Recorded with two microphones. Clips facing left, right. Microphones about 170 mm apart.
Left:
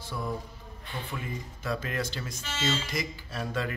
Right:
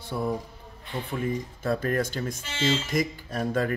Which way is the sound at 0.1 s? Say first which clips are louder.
Right 6 dB; 45° right (ahead or behind).